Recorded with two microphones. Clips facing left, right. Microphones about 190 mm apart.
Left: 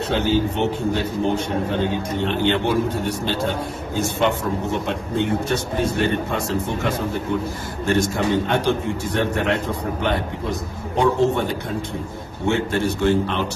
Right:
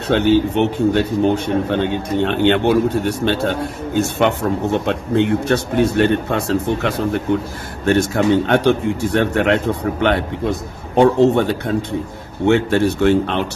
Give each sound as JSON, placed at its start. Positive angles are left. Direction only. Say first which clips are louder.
{"t": 0.1, "sound": "a man's voice", "louder": "right 7 dB", "side_deg": -65}